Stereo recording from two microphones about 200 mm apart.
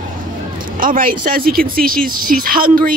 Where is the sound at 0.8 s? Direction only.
45° right (ahead or behind).